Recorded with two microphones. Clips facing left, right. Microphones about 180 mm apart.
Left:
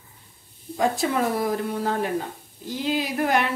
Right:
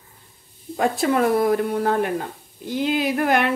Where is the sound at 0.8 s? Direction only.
60° right (ahead or behind).